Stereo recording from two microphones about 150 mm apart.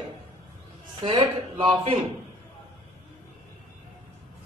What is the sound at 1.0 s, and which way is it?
A man's voice, 35° right (ahead or behind).